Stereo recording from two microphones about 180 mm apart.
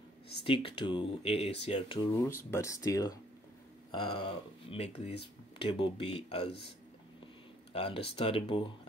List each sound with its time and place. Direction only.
0.4 s speech: 30° left (ahead or behind)
2.2 s speech: 15° left (ahead or behind); by 6.5 s 35° left (ahead or behind)
7.7 s speech: 30° left (ahead or behind)